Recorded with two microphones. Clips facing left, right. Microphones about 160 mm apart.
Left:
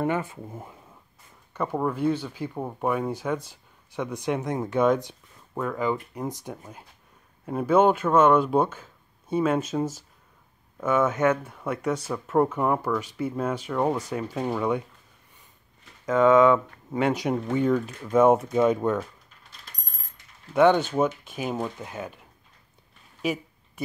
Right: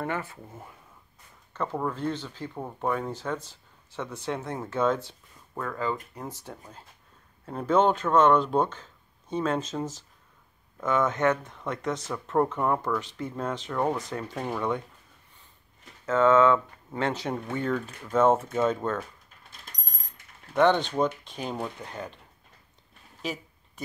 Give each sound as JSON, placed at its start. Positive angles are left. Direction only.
{"t": 0.0, "sound": "speech", "side_deg": 15}
{"t": 16.1, "sound": "speech", "side_deg": 15}
{"t": 20.5, "sound": "speech", "side_deg": 10}